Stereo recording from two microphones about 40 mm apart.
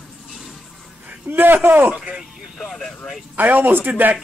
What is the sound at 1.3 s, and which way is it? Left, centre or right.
Speech, right.